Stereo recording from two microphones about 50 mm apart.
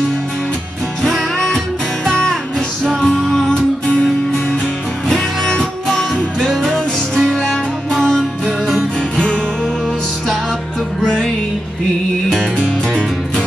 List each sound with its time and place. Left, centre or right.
1.0 s music: centre
2.0 s music: centre
3.2 s music: centre
3.9 s music: left
5.4 s music: centre
9.1 s music: centre
11.0 s music: centre
12.3 s music: centre